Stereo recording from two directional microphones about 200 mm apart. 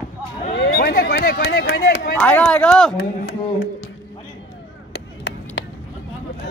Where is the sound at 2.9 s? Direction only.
60° left (ahead or behind).